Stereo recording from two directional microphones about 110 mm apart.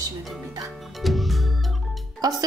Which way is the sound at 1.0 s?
Centre (ahead or behind).